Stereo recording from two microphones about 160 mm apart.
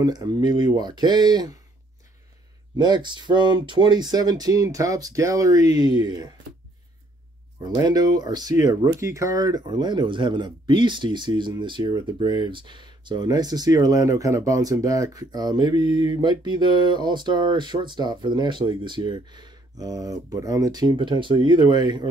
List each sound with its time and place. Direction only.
0.0 s speech: 25° right (ahead or behind)
2.8 s speech: 30° right (ahead or behind)
7.6 s speech: 25° right (ahead or behind)